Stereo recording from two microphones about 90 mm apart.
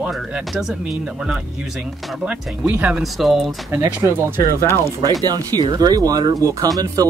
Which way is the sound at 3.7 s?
25° right (ahead or behind).